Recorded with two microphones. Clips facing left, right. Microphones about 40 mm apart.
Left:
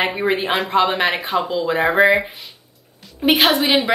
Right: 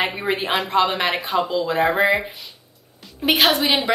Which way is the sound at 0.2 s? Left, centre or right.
Centre.